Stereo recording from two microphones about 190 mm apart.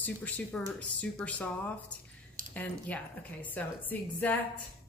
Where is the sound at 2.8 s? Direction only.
10° left (ahead or behind).